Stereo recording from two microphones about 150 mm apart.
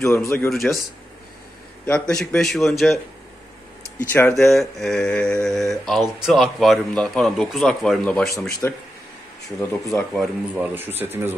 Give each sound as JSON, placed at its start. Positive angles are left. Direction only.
{"t": 0.0, "sound": "speech", "side_deg": 20}
{"t": 0.3, "sound": "mantra", "side_deg": 0}
{"t": 1.9, "sound": "mantra", "side_deg": 5}
{"t": 4.1, "sound": "speech", "side_deg": 15}
{"t": 4.4, "sound": "mantra", "side_deg": 0}
{"t": 8.4, "sound": "speech", "side_deg": 20}
{"t": 10.5, "sound": "speech", "side_deg": -10}